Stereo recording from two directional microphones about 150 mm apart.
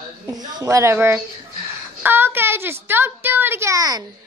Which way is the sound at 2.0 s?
15° right (ahead or behind).